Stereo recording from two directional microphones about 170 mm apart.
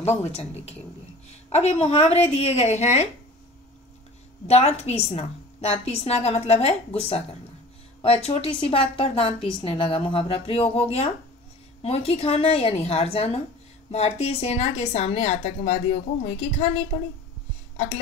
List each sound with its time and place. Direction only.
0.2 s a woman's voice: 40° left (ahead or behind)
4.5 s a woman's voice: 40° left (ahead or behind)
8.0 s a woman's voice: 35° left (ahead or behind)